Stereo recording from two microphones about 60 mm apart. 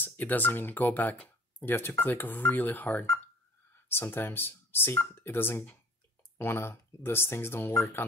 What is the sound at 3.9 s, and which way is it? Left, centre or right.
Speech, left.